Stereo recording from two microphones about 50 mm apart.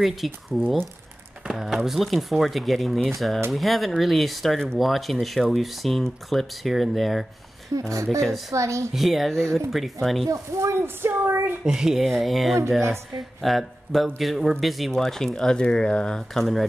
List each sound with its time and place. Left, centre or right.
0.0 s speech: centre
7.9 s speech: right
8.9 s speech: centre
10.3 s speech: right
11.0 s a sound: right
11.6 s speech: centre
12.0 s speech: centre
16.3 s speech: centre